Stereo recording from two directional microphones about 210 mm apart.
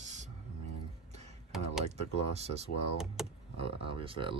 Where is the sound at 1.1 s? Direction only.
30° right (ahead or behind).